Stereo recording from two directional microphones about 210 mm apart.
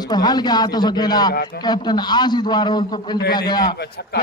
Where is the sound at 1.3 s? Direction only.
50° left (ahead or behind).